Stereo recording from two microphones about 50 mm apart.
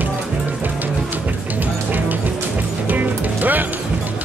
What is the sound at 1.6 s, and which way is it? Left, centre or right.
Music, right.